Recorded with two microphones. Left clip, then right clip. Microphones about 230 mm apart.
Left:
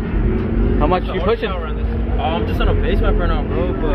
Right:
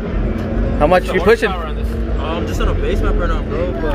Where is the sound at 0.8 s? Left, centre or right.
Right.